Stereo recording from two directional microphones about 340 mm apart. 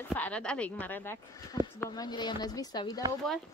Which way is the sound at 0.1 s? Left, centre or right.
Centre.